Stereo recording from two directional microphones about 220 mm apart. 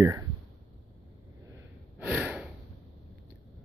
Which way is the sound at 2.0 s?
5° right (ahead or behind).